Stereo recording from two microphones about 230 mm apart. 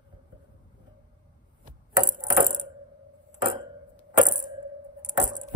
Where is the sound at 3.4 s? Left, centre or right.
Centre.